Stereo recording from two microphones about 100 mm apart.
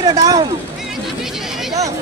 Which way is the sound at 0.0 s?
35° right (ahead or behind).